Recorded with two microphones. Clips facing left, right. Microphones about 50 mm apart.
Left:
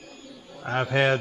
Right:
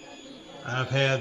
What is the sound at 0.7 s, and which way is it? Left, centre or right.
Speech, centre.